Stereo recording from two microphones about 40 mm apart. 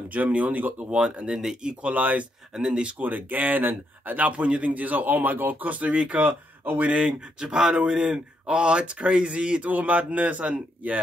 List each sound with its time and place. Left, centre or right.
0.1 s speech: right
0.8 s speech: right
1.3 s speech: centre
1.6 s speech: right
2.5 s speech: right
3.0 s speech: right
6.8 s speech: right
9.7 s speech: right